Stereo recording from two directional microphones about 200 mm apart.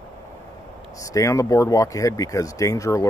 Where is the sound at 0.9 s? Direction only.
15° left (ahead or behind).